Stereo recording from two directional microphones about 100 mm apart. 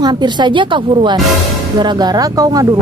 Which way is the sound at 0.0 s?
45° right (ahead or behind).